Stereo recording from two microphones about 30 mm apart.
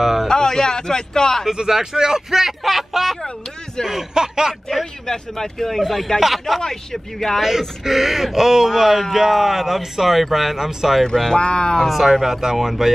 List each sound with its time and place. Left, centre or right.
0.0 s a sound: centre
0.3 s speech: left
1.5 s speech: right
2.6 s a sound: centre
4.1 s speech: right
5.0 s speech: left
5.8 s speech: centre
6.6 s speech: centre
7.4 s speech: centre
11.3 s speech: left
12.0 s speech: centre